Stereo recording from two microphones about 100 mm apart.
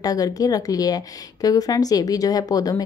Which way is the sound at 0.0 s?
40° left (ahead or behind).